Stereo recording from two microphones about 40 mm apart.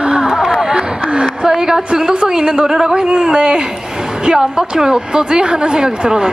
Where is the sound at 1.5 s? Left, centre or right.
Centre.